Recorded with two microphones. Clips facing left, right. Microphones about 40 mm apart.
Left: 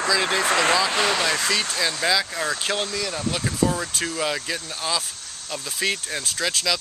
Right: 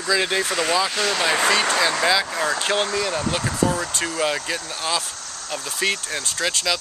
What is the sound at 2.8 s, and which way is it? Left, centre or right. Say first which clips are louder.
Speech: right 4 dB; right.